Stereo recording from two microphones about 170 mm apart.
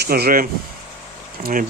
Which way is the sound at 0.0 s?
65° right (ahead or behind).